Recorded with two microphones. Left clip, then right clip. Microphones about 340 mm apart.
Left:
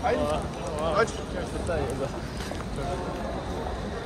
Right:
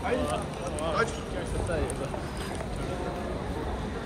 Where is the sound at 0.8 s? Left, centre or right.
Centre.